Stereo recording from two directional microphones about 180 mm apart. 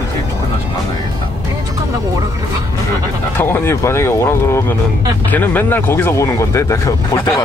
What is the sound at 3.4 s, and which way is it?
Speech, 10° left (ahead or behind).